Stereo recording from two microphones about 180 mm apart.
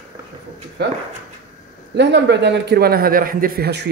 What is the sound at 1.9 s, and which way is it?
A man's voice, 70° right (ahead or behind).